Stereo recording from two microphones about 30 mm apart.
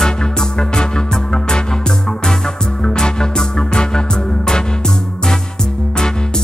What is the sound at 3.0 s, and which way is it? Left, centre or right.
Music, left.